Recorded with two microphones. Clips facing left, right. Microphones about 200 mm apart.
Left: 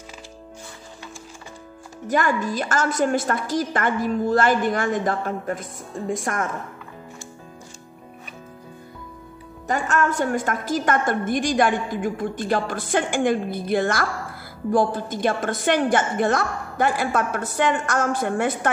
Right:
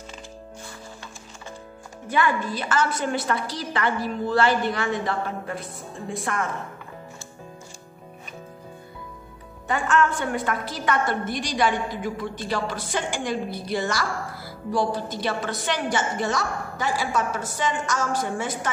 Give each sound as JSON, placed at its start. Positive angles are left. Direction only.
{"t": 2.0, "sound": "a woman's voice", "side_deg": 45}
{"t": 9.7, "sound": "a woman's voice", "side_deg": 40}